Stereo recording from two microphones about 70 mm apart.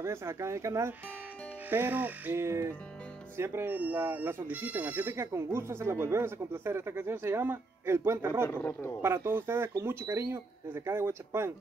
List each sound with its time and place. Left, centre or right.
0.0 s speech: right
1.7 s speech: right
2.3 s speech: right
3.7 s speech: right